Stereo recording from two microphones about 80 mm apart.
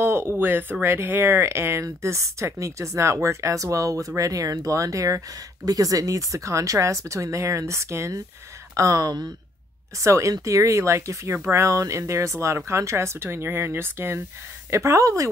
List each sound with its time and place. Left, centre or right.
0.0 s speech: right
8.7 s speech: right
9.9 s speech: right